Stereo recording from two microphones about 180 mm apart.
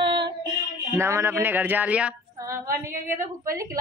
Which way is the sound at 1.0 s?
15° right (ahead or behind).